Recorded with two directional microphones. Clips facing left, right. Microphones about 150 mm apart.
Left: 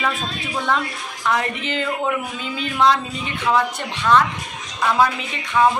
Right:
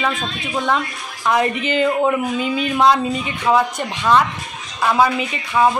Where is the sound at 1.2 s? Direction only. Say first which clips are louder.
Right 5 dB; 15° right (ahead or behind).